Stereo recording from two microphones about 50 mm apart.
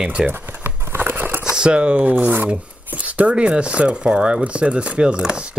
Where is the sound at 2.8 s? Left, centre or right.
Right.